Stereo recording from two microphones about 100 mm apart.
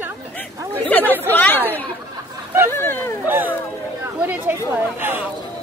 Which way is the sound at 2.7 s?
25° left (ahead or behind).